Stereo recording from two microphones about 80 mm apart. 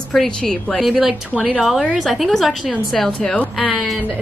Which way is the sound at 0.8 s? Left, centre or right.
Centre.